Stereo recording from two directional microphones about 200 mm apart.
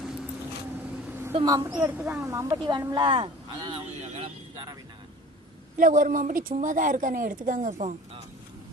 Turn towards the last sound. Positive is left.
turn(degrees=-40)  # may be behind; listen again after turning